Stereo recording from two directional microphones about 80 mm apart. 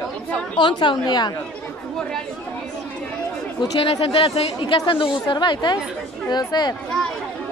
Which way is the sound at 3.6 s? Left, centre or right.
Left.